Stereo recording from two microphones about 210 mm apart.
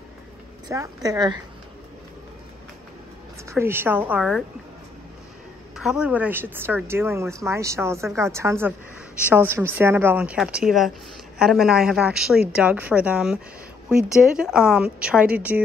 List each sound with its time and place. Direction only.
0.7 s speech: 15° right (ahead or behind)
3.4 s speech: 10° right (ahead or behind)
5.8 s a woman's voice: 5° right (ahead or behind)